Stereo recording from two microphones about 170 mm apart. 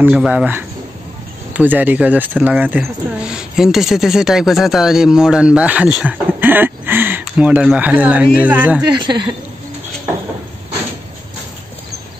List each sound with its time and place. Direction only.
0.0 s speech: 5° right (ahead or behind)
9.0 s speech: 25° right (ahead or behind)